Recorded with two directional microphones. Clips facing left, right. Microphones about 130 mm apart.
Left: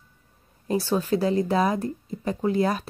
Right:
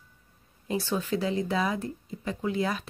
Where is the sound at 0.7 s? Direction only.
40° left (ahead or behind).